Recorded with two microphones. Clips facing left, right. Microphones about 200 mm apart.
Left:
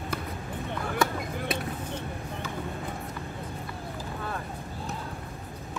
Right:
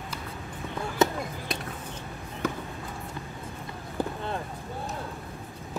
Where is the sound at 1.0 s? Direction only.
20° right (ahead or behind).